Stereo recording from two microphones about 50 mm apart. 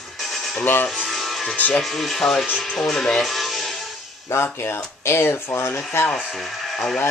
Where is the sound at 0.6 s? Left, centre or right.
Left.